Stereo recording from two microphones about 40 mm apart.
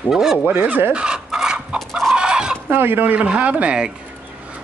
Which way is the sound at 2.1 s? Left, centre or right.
Right.